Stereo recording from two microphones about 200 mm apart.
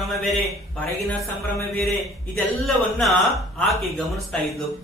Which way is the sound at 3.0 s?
Centre (ahead or behind).